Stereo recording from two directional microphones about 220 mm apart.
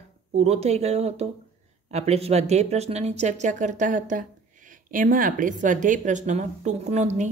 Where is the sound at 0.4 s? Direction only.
30° right (ahead or behind).